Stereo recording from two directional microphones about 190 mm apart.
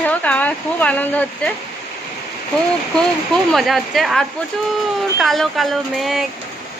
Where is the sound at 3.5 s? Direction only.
Centre (ahead or behind).